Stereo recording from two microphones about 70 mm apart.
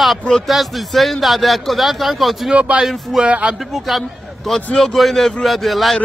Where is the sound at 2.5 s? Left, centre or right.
Centre.